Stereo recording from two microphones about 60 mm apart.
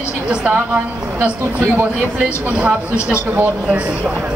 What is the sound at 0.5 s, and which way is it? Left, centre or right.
A woman's voice, right.